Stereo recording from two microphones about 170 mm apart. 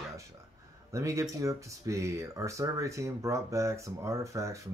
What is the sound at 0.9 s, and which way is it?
Speech, 20° right (ahead or behind).